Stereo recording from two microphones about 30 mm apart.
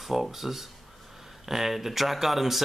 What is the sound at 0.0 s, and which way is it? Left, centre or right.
Speech, centre.